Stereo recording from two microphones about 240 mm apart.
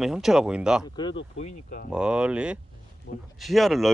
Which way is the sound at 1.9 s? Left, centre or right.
Centre.